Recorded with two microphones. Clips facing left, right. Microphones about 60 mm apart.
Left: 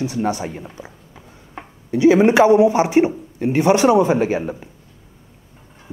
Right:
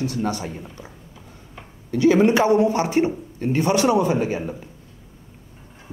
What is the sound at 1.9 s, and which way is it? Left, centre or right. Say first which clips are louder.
A man's voice: left 4 dB; centre.